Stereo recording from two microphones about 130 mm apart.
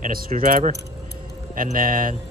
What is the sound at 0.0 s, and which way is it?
Speech, 90° right.